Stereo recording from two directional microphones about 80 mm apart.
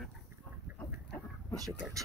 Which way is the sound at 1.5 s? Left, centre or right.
Right.